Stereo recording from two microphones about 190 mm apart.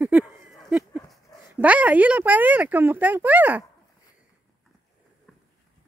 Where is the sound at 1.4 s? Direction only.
10° right (ahead or behind).